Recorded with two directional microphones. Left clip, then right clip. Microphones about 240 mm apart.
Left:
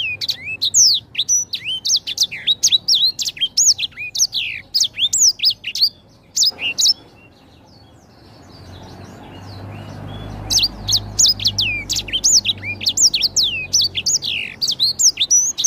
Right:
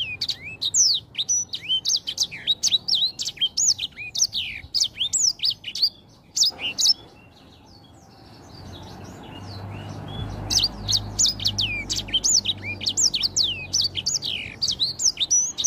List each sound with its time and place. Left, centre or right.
0.0 s bird: centre
10.5 s bird: centre